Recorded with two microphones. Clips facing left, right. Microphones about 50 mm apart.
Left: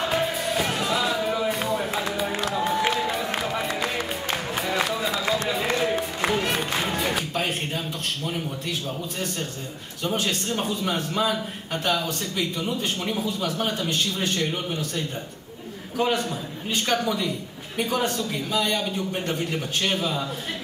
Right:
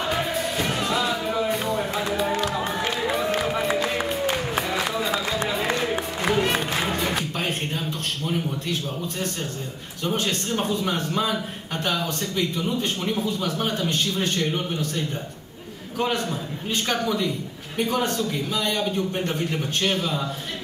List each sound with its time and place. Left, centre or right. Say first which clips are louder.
0.1 s music: left 1 dB; centre
2.9 s a sound: right 1 dB; centre
3.4 s music: right 3 dB; centre
4.8 s a sound: right 1 dB; centre
5.8 s music: left 1 dB; centre
10.0 s a man's voice: even; centre